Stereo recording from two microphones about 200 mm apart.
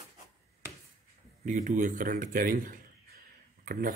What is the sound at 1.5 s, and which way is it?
Speech, 40° right (ahead or behind).